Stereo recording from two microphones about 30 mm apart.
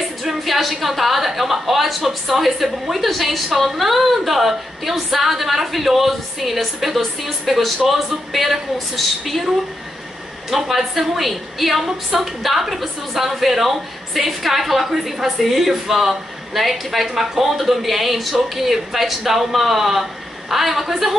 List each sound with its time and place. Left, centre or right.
0.5 s a woman's voice: centre
10.5 s a woman's voice: centre